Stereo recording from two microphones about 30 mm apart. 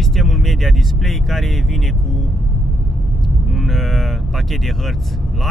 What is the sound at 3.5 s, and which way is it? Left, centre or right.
Speech, centre.